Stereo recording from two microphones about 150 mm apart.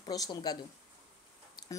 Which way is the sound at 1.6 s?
25° left (ahead or behind).